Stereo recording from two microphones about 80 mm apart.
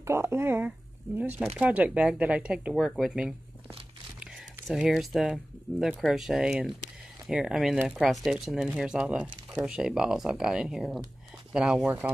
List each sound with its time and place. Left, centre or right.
0.0 s speech: right; by 2.7 s centre
2.7 s speech: centre
4.2 s a sound: centre
4.7 s speech: centre